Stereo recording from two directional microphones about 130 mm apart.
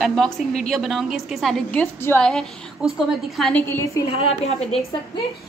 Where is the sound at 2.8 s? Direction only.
5° right (ahead or behind).